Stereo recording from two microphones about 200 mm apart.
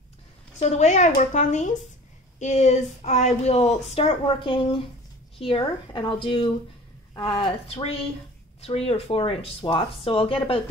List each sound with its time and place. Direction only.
0.6 s speech: 35° left (ahead or behind)